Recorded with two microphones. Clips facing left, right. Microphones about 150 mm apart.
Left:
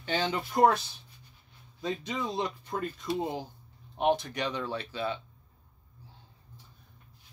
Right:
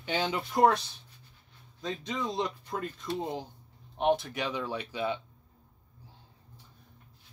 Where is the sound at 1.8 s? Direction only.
5° left (ahead or behind); by 5.2 s 15° right (ahead or behind).